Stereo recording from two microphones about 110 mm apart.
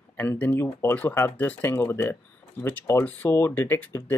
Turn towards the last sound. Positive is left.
turn(degrees=20)  # may be behind; listen again after turning